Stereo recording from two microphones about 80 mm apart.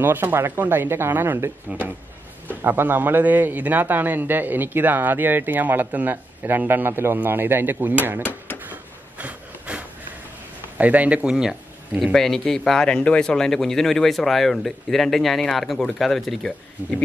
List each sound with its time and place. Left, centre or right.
0.0 s a man's voice: right
9.2 s wood: centre
10.8 s speech: centre
12.1 s speech: centre